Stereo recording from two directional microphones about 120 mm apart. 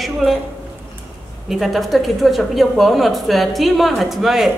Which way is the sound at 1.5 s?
Centre (ahead or behind).